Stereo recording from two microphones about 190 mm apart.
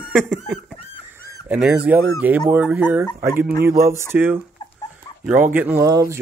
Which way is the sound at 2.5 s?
10° right (ahead or behind).